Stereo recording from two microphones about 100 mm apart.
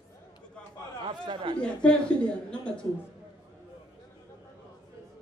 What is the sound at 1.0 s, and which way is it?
Speech, 60° right (ahead or behind).